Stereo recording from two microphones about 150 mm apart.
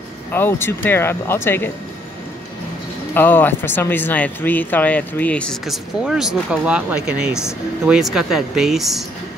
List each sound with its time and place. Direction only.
0.3 s speech: 15° left (ahead or behind)
3.2 s speech: 15° left (ahead or behind)